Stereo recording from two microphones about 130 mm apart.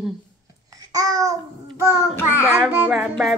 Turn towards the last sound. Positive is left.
turn(degrees=0)  # may be behind; listen again after turning